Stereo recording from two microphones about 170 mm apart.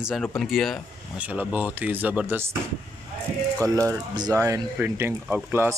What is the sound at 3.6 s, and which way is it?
Speech, 20° right (ahead or behind).